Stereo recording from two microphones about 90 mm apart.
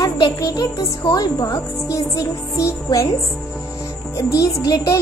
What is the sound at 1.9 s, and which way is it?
Speech, 35° left (ahead or behind).